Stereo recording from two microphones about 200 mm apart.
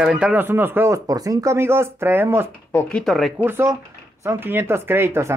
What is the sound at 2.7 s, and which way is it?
Speech, 10° left (ahead or behind).